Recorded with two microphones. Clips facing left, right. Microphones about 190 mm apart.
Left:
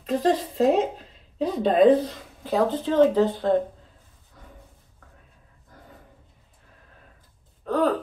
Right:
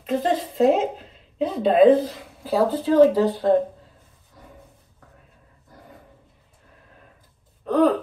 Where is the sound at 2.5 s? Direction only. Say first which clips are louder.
Right 2 dB; 35° right (ahead or behind).